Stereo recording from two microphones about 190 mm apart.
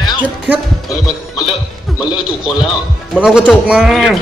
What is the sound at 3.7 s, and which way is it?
Speech, 5° right (ahead or behind).